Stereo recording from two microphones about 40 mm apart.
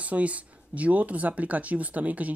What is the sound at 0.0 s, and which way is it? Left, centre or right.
Speech, right.